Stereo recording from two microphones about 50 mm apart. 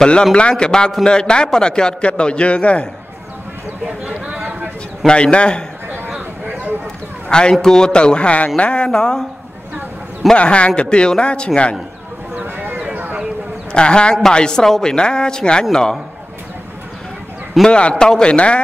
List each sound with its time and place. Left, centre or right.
0.0 s a man's voice: centre
5.0 s a man's voice: left
7.2 s a man's voice: centre
10.3 s a man's voice: left
12.4 s a sound: right
13.7 s a man's voice: centre
17.6 s a man's voice: centre